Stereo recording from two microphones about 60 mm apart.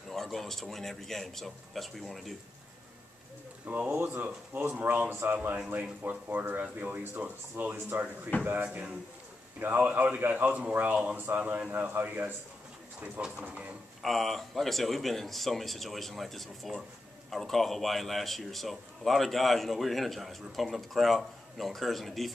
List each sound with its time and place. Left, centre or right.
0.1 s a man's voice: centre
3.6 s speech: right
4.9 s speech: right
8.3 s speech: left
8.6 s speech: right
14.0 s a man's voice: centre